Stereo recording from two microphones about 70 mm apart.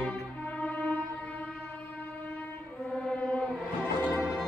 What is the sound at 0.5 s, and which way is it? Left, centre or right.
Music, centre.